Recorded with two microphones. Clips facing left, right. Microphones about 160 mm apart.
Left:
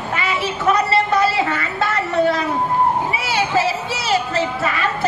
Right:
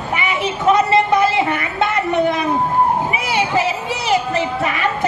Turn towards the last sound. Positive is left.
turn(degrees=-15)  # may be behind; listen again after turning